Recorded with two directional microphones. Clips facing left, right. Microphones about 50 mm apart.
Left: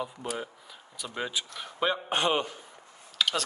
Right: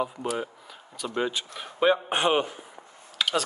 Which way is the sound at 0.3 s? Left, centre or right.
Centre.